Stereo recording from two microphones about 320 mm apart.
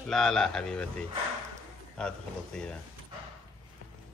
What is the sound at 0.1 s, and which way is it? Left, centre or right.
Speech, centre.